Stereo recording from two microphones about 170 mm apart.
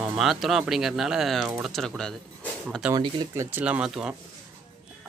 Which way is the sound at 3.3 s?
10° right (ahead or behind).